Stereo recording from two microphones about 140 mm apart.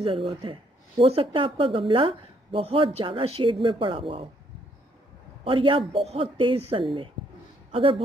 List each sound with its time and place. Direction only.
0.0 s speech: 40° right (ahead or behind)
5.4 s a woman's voice: 40° right (ahead or behind)